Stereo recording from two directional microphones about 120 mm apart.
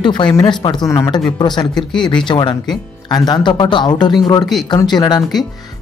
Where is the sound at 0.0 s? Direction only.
40° left (ahead or behind).